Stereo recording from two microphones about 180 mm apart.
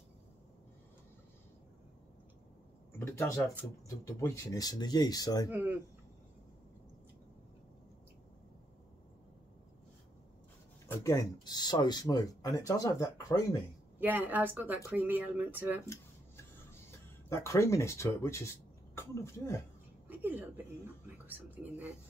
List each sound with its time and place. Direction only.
3.0 s speech: 15° left (ahead or behind)
5.5 s speech: 10° right (ahead or behind)
10.9 s speech: 15° left (ahead or behind)
13.9 s speech: 10° right (ahead or behind)
16.9 s speech: 15° left (ahead or behind)
20.1 s a woman's voice: 10° right (ahead or behind)